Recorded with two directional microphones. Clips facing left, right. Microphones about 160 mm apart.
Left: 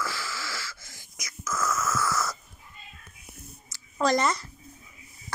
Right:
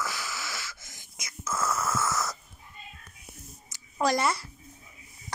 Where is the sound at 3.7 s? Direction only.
10° right (ahead or behind).